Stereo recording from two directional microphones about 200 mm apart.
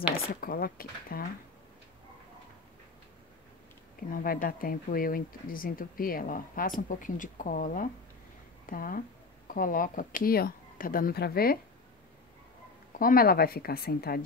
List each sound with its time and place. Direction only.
0.3 s speech: 45° left (ahead or behind)
4.1 s speech: 45° left (ahead or behind)
13.0 s speech: 45° left (ahead or behind)